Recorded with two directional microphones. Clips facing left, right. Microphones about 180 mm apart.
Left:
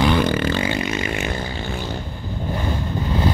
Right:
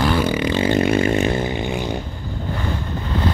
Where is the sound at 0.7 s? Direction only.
55° right (ahead or behind).